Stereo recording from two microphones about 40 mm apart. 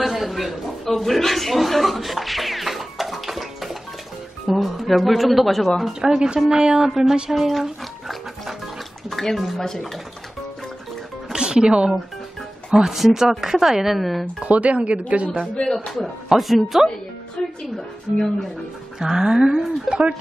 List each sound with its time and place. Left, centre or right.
0.0 s a man's voice: centre
5.9 s speech: centre
9.1 s speech: centre
11.3 s speech: centre
12.7 s speech: centre
13.9 s speech: centre
14.4 s speech: right
16.3 s speech: centre
17.4 s speech: left
17.7 s speech: centre
19.0 s speech: centre
19.9 s speech: centre